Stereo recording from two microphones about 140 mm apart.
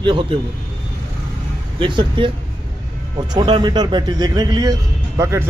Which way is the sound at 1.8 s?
35° right (ahead or behind).